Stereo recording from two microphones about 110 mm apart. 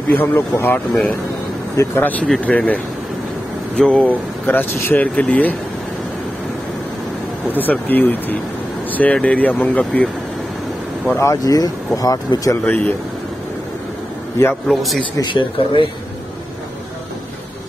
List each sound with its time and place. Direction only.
0.1 s speech: 20° left (ahead or behind)
1.8 s speech: 15° left (ahead or behind)
7.5 s speech: 15° left (ahead or behind)
11.1 s speech: 30° left (ahead or behind)
12.6 s speech: 15° left (ahead or behind)
14.5 s a man's voice: centre (ahead or behind)
15.1 s speech: 45° left (ahead or behind)